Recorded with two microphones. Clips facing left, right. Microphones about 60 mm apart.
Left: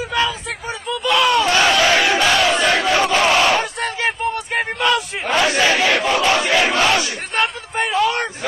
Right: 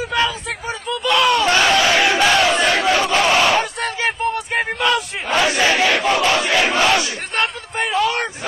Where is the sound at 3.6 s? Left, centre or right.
Centre.